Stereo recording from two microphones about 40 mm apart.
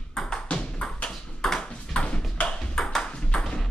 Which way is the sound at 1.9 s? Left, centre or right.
Left.